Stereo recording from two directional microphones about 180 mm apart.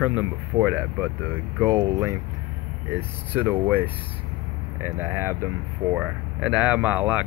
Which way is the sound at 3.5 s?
10° right (ahead or behind).